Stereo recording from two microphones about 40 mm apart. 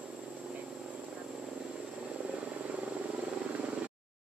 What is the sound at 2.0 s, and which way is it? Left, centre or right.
Vehicle, right.